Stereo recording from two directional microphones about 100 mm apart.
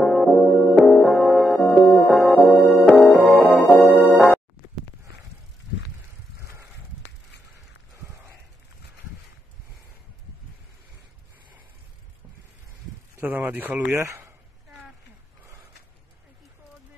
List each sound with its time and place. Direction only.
0.0 s music: centre (ahead or behind)
13.2 s a sound: 15° right (ahead or behind)
13.9 s speech: 30° right (ahead or behind)